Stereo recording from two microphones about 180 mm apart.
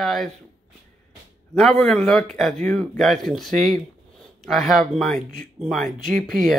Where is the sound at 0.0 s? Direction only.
Centre (ahead or behind).